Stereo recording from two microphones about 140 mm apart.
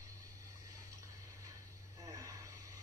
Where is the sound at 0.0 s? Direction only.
25° right (ahead or behind).